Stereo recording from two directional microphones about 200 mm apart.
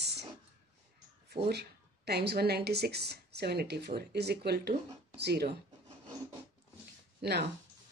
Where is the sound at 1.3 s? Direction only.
55° right (ahead or behind).